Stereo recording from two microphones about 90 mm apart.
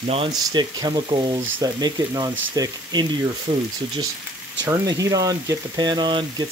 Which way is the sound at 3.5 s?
65° right (ahead or behind).